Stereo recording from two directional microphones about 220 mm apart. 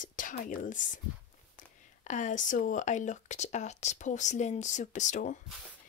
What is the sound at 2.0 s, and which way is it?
A woman's voice, 35° left (ahead or behind).